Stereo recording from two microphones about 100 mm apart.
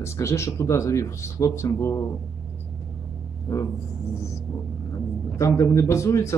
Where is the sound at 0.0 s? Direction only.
30° left (ahead or behind).